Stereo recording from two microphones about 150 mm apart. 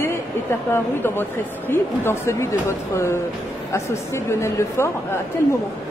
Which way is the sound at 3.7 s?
20° left (ahead or behind).